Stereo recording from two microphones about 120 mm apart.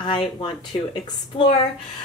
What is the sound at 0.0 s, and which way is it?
Speech, 40° left (ahead or behind).